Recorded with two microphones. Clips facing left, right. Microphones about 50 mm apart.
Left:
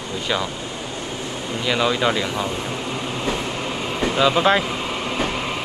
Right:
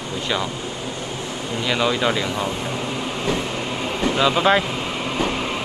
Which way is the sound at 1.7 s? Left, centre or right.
Centre.